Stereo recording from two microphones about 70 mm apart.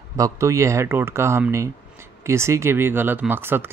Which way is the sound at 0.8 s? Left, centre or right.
Right.